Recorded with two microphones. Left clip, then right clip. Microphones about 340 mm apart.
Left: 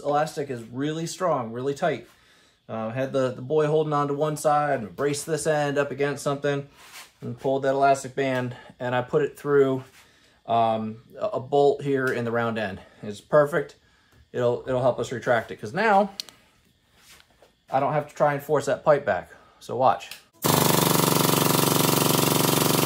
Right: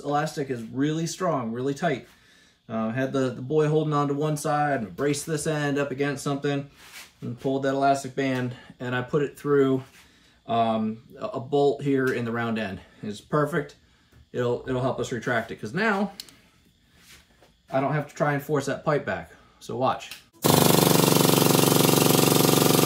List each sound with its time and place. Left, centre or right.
0.0 s speech: centre
17.6 s speech: centre
20.4 s jackhammer: centre